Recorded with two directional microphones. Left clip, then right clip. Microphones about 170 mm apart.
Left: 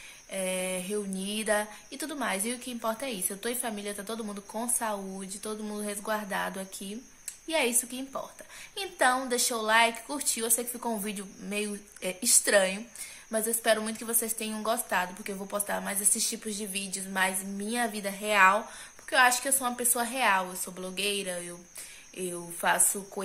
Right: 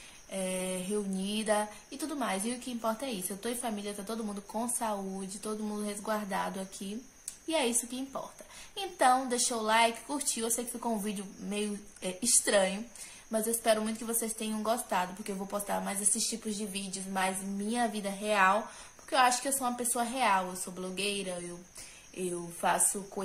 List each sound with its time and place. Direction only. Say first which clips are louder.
0.3 s speech: left 3 dB; 5° right (ahead or behind)
13.8 s speech: left 2 dB; 5° right (ahead or behind)
19.0 s a woman's voice: left 3 dB; 10° right (ahead or behind)